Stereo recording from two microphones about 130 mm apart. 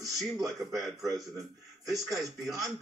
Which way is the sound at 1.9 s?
25° right (ahead or behind).